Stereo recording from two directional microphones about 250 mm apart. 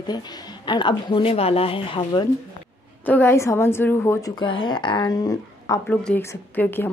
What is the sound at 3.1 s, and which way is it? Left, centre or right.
Speech, centre.